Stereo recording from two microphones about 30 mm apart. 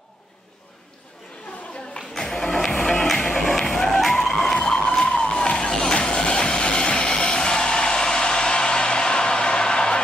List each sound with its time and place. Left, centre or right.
2.0 s music: centre
4.6 s vehicle: left
5.0 s a sound: left